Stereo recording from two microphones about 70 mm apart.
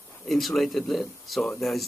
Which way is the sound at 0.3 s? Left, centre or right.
Centre.